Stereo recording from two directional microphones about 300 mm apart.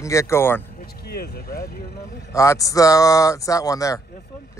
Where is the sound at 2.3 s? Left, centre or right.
Centre.